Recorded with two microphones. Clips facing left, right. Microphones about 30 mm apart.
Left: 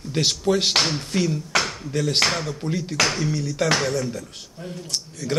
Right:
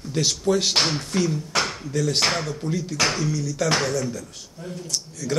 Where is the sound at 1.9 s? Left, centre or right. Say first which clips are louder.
Left 1 dB; left.